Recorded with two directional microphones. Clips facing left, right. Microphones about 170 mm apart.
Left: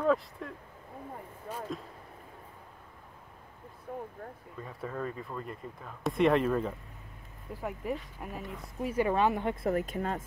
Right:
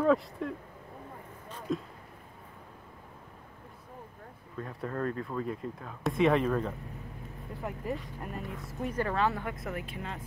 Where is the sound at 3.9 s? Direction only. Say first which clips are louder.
Left 10 dB; 65° left (ahead or behind).